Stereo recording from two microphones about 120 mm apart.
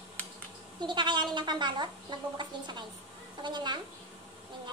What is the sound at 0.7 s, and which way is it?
Speech, 40° right (ahead or behind).